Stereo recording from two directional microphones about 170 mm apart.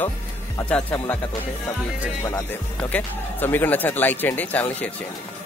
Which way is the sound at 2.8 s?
10° left (ahead or behind).